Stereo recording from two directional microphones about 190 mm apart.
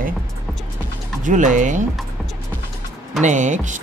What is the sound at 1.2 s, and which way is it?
Speech, 40° right (ahead or behind).